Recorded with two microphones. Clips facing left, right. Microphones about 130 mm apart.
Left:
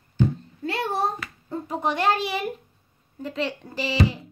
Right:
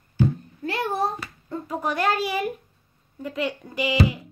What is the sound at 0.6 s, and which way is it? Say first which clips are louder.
A child's voice: even; 30° left (ahead or behind).